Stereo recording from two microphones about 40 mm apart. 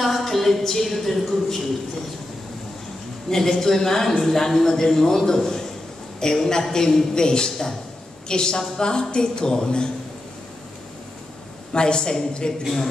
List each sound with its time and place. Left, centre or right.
0.0 s a woman's voice: centre
3.3 s a man's voice: centre
11.7 s a woman's voice: left